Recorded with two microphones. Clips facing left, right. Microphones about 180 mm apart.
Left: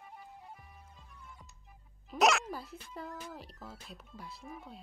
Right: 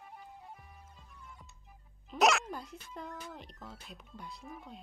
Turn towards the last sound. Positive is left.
turn(degrees=0)  # may be behind; listen again after turning